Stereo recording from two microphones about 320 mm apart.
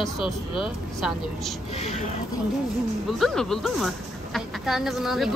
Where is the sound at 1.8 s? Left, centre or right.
Left.